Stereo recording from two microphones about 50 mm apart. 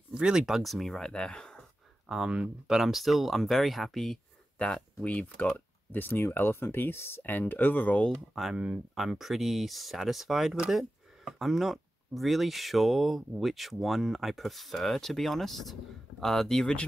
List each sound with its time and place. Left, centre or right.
0.1 s speech: centre
0.5 s speech: centre
0.9 s speech: centre
2.0 s speech: centre
4.6 s speech: left
5.9 s speech: left
8.3 s speech: centre